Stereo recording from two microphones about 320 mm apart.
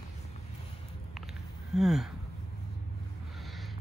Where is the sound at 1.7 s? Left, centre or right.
Centre.